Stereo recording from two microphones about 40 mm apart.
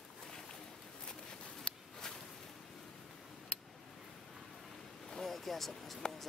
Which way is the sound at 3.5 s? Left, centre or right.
Left.